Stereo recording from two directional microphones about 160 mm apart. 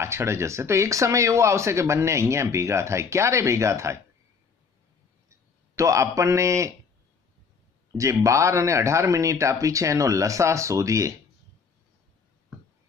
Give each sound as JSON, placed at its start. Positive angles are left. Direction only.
{"t": 0.0, "sound": "speech", "side_deg": -15}
{"t": 5.8, "sound": "speech", "side_deg": -20}
{"t": 7.9, "sound": "speech", "side_deg": -20}